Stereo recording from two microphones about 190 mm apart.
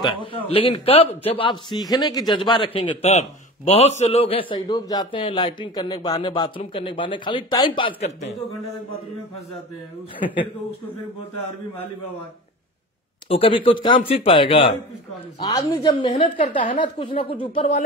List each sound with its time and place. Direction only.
0.0 s a man's voice: 25° left (ahead or behind)
13.3 s a man's voice: 30° left (ahead or behind)